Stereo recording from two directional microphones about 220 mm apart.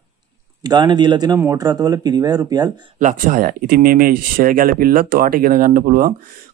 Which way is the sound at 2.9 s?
35° right (ahead or behind).